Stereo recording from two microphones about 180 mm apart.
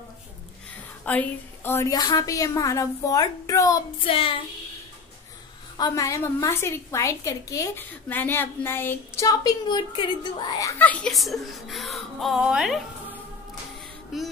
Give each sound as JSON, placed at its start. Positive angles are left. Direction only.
{"t": 1.0, "sound": "a woman's voice", "side_deg": 10}
{"t": 4.0, "sound": "child singing", "side_deg": 30}
{"t": 5.8, "sound": "a woman's voice", "side_deg": 20}